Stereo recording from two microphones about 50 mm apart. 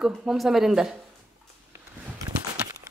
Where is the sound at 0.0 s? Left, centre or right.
Centre.